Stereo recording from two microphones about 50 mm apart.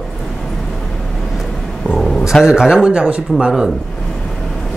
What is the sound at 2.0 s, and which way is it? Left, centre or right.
Dog, centre.